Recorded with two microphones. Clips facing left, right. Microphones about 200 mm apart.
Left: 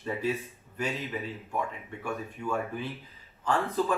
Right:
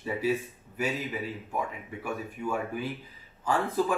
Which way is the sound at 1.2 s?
15° right (ahead or behind).